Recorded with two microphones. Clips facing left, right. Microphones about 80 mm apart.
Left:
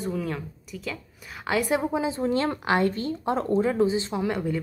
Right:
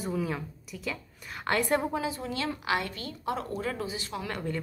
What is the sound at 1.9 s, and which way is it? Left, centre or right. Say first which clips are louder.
Speech: left 5 dB; left.